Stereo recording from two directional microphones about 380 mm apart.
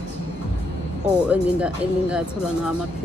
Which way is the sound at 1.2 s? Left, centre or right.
Centre.